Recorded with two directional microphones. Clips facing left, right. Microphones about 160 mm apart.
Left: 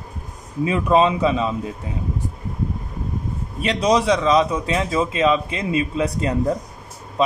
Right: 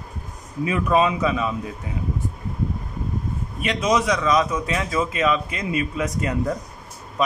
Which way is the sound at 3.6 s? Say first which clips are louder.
Left 3 dB; 30° left (ahead or behind).